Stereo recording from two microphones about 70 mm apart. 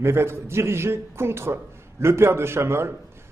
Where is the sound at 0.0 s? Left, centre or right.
Right.